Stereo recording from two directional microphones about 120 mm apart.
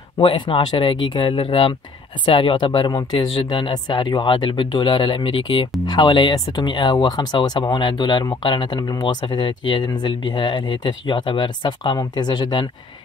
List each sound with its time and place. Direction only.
0.2 s speech: 45° left (ahead or behind)